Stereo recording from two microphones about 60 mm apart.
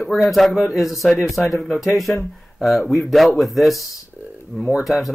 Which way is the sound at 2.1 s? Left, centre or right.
Centre.